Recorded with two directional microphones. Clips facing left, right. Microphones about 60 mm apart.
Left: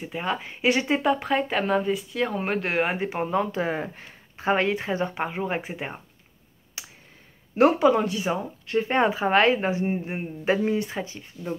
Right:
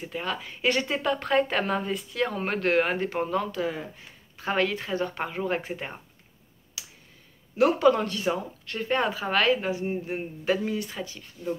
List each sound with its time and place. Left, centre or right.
0.1 s speech: left
1.3 s speech: centre
3.6 s speech: left
4.4 s speech: left
6.8 s a sound: left
7.8 s speech: centre